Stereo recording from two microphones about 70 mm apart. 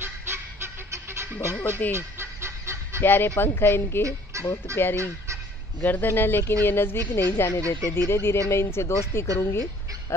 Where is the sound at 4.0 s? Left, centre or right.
Right.